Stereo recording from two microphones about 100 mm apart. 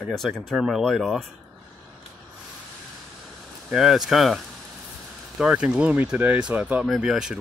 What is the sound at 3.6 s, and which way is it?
Speech, 5° right (ahead or behind).